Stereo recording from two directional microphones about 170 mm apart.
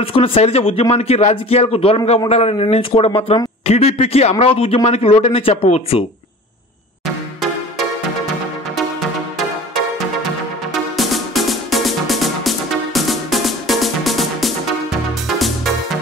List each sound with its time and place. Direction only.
0.0 s a man's voice: 35° left (ahead or behind)
10.7 s music: centre (ahead or behind)